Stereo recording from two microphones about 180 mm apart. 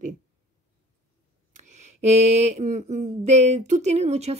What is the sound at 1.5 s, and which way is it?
Speech, 40° right (ahead or behind).